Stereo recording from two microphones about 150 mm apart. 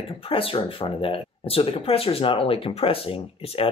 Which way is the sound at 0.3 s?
40° left (ahead or behind).